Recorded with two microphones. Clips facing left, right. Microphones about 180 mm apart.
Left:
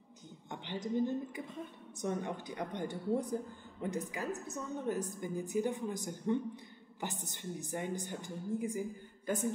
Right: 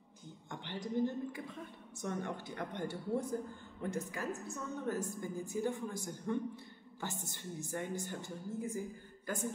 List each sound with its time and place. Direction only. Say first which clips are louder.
0.5 s a woman's voice: left 3 dB; 20° left (ahead or behind)